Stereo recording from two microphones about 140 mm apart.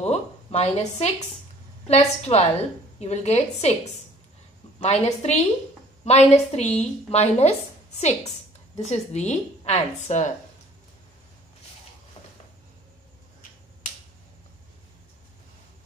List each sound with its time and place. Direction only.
0.0 s a woman's voice: 50° left (ahead or behind)
4.7 s a woman's voice: 50° left (ahead or behind)